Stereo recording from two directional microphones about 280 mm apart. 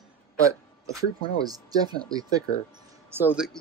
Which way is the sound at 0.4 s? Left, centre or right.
Centre.